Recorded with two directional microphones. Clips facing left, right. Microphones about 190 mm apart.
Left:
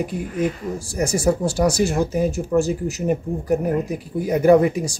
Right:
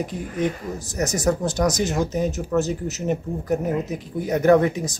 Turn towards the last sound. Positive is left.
turn(degrees=10)  # may be behind; listen again after turning